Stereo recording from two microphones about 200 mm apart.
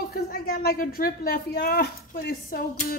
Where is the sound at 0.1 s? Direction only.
50° left (ahead or behind).